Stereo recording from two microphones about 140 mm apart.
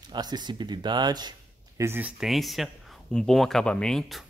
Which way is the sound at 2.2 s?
Centre (ahead or behind).